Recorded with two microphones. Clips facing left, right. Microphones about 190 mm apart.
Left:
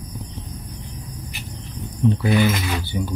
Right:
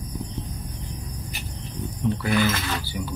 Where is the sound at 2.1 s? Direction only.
20° left (ahead or behind).